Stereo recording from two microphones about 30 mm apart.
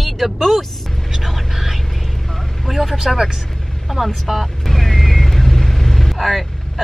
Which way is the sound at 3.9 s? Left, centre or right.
Centre.